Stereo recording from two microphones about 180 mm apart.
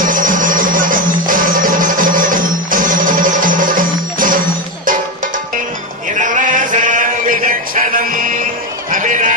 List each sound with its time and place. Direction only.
0.0 s music: 50° right (ahead or behind)
6.1 s chant: 45° right (ahead or behind)
8.9 s a sound: 45° right (ahead or behind)